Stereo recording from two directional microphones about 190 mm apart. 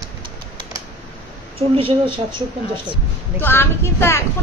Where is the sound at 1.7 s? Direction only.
25° right (ahead or behind).